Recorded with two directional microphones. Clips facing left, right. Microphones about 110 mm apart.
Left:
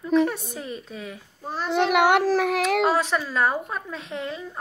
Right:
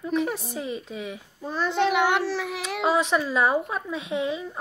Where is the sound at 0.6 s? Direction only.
20° right (ahead or behind).